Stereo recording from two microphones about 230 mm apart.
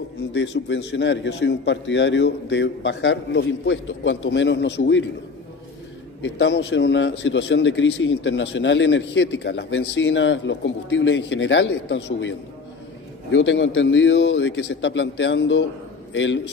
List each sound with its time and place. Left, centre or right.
0.3 s a man's voice: left
6.2 s a man's voice: left